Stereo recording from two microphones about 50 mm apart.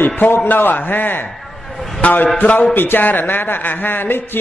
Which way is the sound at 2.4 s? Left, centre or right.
Left.